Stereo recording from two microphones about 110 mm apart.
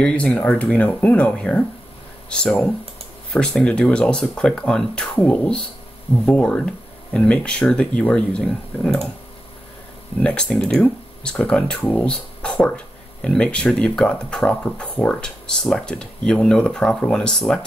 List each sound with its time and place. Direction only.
0.0 s speech: 10° left (ahead or behind)
10.2 s speech: 10° left (ahead or behind)